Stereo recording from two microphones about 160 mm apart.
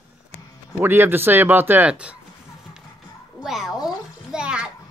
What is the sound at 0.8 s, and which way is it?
Speech, 15° right (ahead or behind).